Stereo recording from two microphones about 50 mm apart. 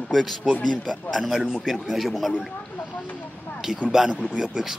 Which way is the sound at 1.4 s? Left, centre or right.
Centre.